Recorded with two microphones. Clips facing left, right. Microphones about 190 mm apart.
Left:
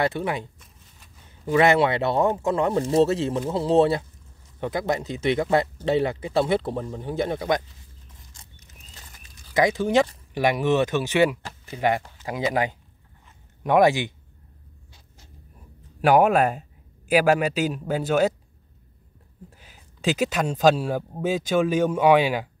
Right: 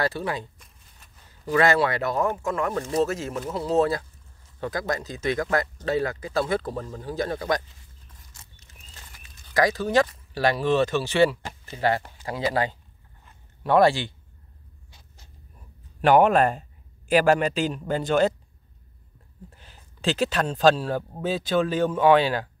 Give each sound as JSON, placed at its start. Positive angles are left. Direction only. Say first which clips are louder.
{"t": 0.0, "sound": "speech", "louder": "left 2 dB", "side_deg": 20}
{"t": 0.6, "sound": "a sound", "louder": "left 2 dB", "side_deg": 0}
{"t": 1.3, "sound": "speech", "louder": "left 2 dB", "side_deg": 20}
{"t": 9.5, "sound": "speech", "louder": "left 2 dB", "side_deg": 20}
{"t": 12.2, "sound": "speech", "louder": "left 1 dB", "side_deg": -10}
{"t": 13.7, "sound": "speech", "louder": "left 1 dB", "side_deg": 15}
{"t": 16.0, "sound": "speech", "louder": "even", "side_deg": 10}
{"t": 19.5, "sound": "speech", "louder": "even", "side_deg": 10}